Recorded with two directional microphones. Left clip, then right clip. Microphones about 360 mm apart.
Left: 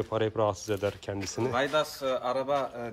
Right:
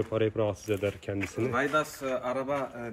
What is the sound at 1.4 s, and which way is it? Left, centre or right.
Speech, left.